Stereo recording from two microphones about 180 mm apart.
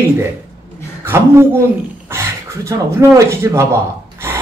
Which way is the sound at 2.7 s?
15° right (ahead or behind).